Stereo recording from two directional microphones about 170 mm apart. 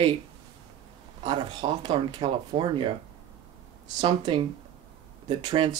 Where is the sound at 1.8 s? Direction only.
30° right (ahead or behind).